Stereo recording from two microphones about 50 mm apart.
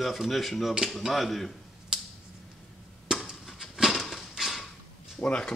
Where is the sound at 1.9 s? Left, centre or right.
Centre.